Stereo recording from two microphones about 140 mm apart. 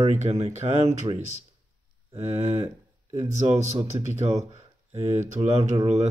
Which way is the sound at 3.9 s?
35° right (ahead or behind).